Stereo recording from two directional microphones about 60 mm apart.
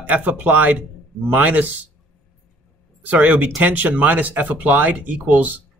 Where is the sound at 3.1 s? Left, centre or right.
Right.